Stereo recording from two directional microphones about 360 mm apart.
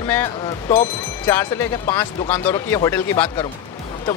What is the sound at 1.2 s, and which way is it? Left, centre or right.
Speech, centre.